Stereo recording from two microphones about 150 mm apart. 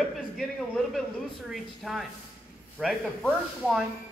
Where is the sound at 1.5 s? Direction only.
Centre (ahead or behind).